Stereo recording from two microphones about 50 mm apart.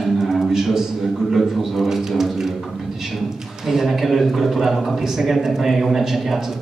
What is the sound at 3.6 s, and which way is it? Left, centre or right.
A man's voice, centre.